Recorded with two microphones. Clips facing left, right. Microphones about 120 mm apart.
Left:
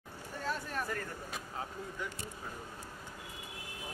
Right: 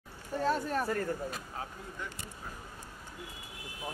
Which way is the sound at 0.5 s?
40° right (ahead or behind).